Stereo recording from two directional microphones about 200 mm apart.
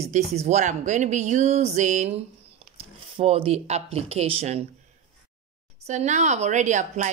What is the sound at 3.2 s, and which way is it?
Speech, 30° right (ahead or behind).